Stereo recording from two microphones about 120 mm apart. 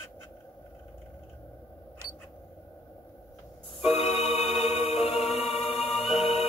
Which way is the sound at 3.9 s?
60° left (ahead or behind).